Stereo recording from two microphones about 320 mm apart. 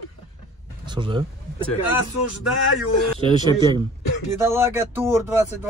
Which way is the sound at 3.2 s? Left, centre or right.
Centre.